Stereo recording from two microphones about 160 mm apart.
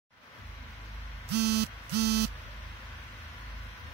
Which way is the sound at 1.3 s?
90° right.